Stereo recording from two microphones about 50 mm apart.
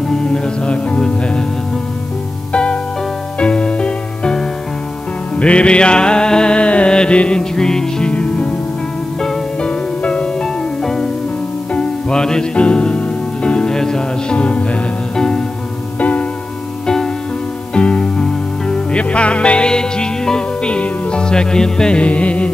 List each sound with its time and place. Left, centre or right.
0.1 s music: centre
2.5 s music: left
8.1 s music: left
9.6 s music: left
16.0 s music: left
16.8 s music: centre
17.7 s music: left